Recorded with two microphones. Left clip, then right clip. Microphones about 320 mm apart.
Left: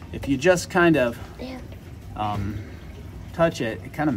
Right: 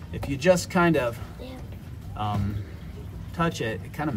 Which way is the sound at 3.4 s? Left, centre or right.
Centre.